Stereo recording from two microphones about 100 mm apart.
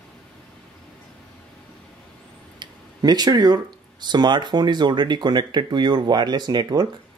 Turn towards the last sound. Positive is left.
turn(degrees=-45)  # may be behind; listen again after turning